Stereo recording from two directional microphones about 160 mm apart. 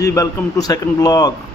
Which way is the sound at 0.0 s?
20° left (ahead or behind).